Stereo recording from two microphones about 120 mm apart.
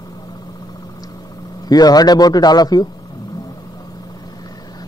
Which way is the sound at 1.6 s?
35° left (ahead or behind).